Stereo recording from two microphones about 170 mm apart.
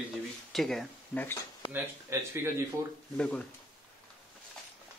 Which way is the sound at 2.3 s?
15° right (ahead or behind).